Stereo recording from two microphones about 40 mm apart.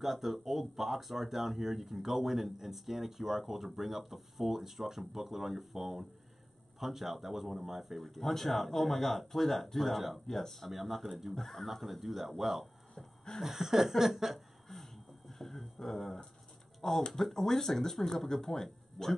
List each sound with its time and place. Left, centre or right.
0.0 s speech: centre
6.8 s chuckle: centre
7.6 s speech: centre
12.9 s a sound: centre
13.4 s chuckle: centre
14.7 s a sound: centre
17.1 s speech: centre